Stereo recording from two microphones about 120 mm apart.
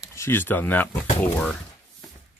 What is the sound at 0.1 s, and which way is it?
Speech, 20° left (ahead or behind).